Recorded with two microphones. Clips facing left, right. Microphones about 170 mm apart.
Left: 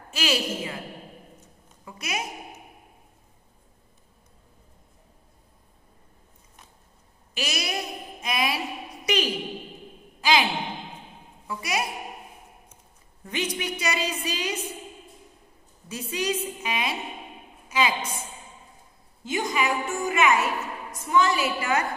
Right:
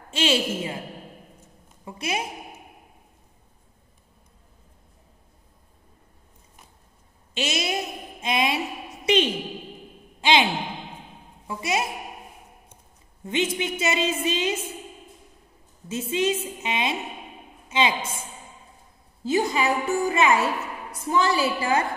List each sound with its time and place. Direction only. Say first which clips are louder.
0.1 s a woman's voice: right 4 dB; 25° right (ahead or behind)
1.9 s a woman's voice: right 4 dB; 30° right (ahead or behind)
7.3 s a sound: right 4 dB; 25° right (ahead or behind)
10.2 s sigh: right 2 dB; 25° right (ahead or behind)
11.4 s a woman's voice: right 3 dB; 25° right (ahead or behind)
13.2 s a woman's voice: right 4 dB; 25° right (ahead or behind)
15.9 s a woman's voice: right 4 dB; 25° right (ahead or behind)
19.2 s a woman's voice: right 4 dB; 35° right (ahead or behind)